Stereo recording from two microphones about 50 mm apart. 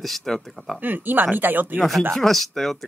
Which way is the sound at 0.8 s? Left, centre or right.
Right.